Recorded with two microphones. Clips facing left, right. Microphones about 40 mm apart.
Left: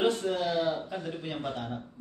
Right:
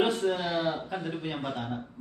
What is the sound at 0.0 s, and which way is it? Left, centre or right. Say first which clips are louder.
A man's voice: right 1 dB; centre.